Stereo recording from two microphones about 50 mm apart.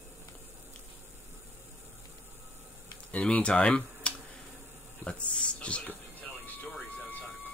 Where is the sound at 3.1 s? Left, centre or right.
Left.